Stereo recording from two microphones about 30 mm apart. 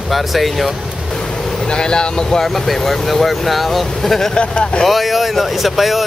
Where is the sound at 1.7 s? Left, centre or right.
Left.